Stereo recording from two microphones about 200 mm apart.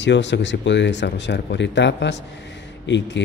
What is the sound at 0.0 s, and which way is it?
Speech, 60° left (ahead or behind).